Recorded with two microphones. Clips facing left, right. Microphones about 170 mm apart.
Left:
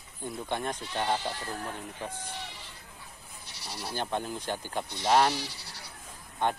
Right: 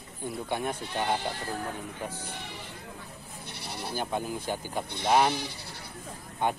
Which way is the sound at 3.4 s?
55° right (ahead or behind).